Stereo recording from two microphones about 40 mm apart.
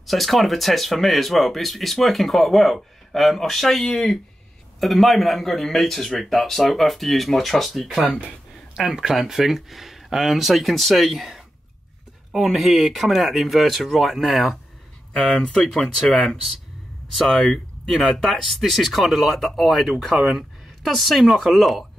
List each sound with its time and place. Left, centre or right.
0.0 s speech: centre
8.7 s speech: centre
15.3 s speech: centre
15.7 s speech: centre